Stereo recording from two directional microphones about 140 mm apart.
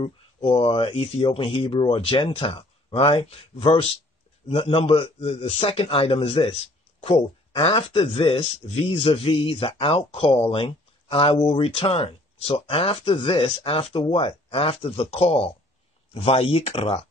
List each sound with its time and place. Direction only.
0.0 s speech: 40° left (ahead or behind)